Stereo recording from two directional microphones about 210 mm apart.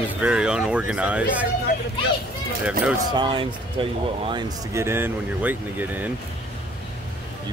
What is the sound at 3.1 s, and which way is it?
Speech, 20° right (ahead or behind).